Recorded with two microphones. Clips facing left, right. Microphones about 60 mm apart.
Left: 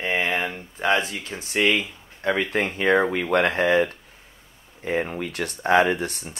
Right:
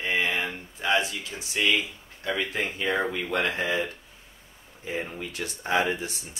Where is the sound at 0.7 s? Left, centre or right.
Left.